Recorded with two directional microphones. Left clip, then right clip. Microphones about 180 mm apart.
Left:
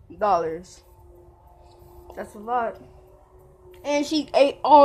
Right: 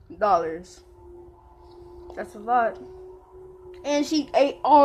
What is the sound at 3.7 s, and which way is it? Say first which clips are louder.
A child's voice: even; 15° left (ahead or behind).